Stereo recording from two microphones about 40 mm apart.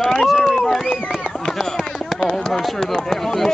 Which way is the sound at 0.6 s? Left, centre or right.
Centre.